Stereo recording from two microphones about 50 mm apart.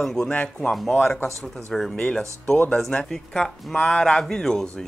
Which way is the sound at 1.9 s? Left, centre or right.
Centre.